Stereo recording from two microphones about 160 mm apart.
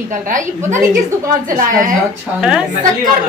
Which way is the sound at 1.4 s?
55° right (ahead or behind).